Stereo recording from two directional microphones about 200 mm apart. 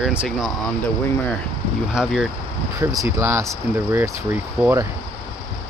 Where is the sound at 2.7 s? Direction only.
15° right (ahead or behind).